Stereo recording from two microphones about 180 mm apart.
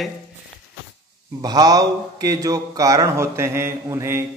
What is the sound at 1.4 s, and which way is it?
A man's voice, 20° right (ahead or behind).